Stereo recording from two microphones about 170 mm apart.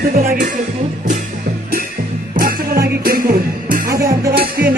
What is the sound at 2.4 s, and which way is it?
Music, 60° right (ahead or behind).